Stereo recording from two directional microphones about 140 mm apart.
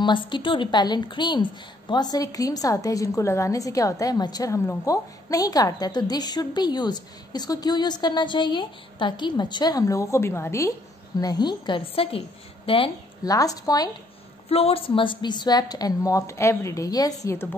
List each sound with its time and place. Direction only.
0.0 s a woman's voice: 35° left (ahead or behind)
13.2 s a woman's voice: 25° left (ahead or behind)
14.5 s a woman's voice: 45° left (ahead or behind); by 17.5 s 20° left (ahead or behind)